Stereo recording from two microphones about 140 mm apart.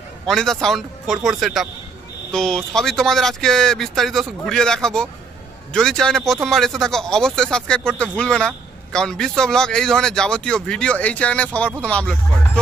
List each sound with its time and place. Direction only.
0.3 s speech: 5° left (ahead or behind)